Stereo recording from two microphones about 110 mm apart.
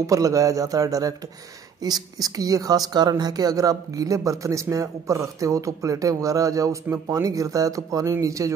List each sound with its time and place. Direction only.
0.0 s a woman's voice: 30° right (ahead or behind)